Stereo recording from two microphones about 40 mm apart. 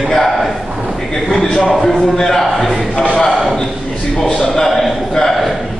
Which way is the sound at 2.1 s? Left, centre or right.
Centre.